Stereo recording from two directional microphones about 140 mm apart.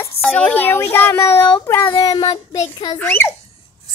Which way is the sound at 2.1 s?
40° left (ahead or behind).